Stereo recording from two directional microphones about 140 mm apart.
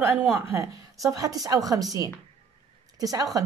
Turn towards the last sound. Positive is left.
turn(degrees=-25)  # may be behind; listen again after turning